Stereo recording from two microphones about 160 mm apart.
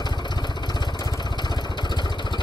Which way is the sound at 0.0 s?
25° left (ahead or behind).